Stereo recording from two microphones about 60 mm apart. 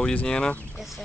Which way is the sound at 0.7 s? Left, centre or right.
Centre.